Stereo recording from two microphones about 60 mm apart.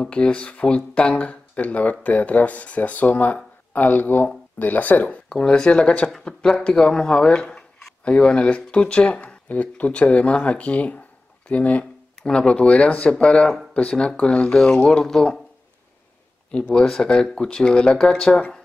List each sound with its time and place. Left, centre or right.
0.0 s speech: centre
5.3 s speech: centre
16.7 s speech: centre